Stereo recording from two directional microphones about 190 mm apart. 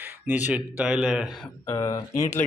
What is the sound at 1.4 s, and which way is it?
Speech, 15° left (ahead or behind).